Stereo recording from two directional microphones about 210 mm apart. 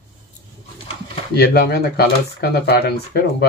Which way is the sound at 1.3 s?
50° left (ahead or behind).